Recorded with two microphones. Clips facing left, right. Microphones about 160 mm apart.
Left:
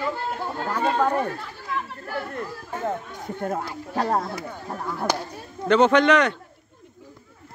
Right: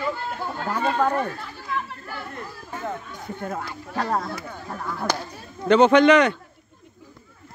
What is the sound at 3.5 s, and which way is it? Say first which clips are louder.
Speech: left 2 dB; 35° left (ahead or behind).